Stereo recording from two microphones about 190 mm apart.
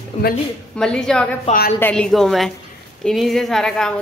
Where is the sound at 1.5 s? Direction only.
45° left (ahead or behind).